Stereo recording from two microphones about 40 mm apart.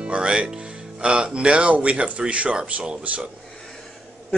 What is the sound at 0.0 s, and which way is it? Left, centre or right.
A man's voice, right.